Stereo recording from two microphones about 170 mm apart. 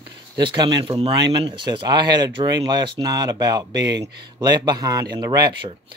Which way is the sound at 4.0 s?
70° right (ahead or behind).